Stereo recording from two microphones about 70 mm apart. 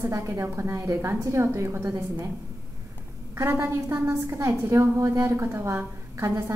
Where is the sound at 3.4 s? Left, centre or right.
Right.